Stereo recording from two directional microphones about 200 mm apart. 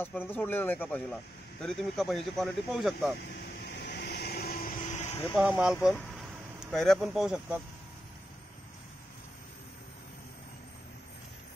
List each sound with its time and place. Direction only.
0.0 s speech: 10° left (ahead or behind)
3.2 s vehicle: 50° left (ahead or behind); by 5.2 s 35° left (ahead or behind)
5.3 s speech: centre (ahead or behind)